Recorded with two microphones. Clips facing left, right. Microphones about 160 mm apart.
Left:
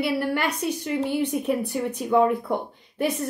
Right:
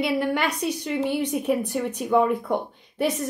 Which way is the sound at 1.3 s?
5° right (ahead or behind).